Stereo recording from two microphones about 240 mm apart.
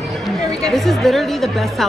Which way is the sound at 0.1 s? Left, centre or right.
Centre.